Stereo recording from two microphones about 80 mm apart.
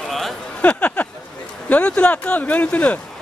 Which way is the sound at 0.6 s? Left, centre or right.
Centre.